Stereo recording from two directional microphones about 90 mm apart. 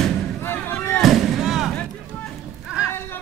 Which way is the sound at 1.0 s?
Centre (ahead or behind).